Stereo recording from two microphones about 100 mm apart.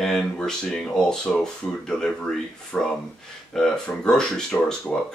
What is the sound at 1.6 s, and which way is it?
Speech, 35° left (ahead or behind).